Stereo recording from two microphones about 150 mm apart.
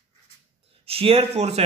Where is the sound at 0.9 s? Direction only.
40° right (ahead or behind).